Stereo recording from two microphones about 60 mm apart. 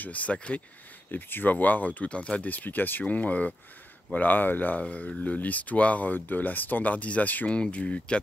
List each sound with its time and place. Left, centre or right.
0.0 s speech: left
1.1 s speech: left
2.4 s speech: left